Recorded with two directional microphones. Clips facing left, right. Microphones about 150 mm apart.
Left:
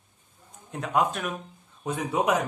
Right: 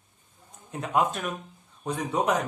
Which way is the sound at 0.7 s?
Centre (ahead or behind).